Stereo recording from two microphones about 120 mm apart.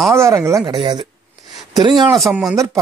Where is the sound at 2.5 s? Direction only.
25° right (ahead or behind).